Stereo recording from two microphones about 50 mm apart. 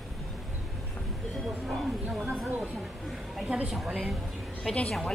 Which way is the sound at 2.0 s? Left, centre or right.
Right.